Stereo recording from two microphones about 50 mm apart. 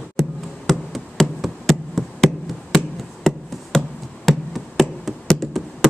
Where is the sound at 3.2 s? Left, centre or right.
Centre.